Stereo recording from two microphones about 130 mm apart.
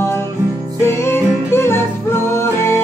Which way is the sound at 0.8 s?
20° left (ahead or behind).